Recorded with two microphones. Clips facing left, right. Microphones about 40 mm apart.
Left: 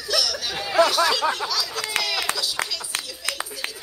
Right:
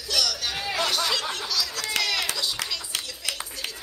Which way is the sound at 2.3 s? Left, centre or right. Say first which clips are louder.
Left 1 dB; centre.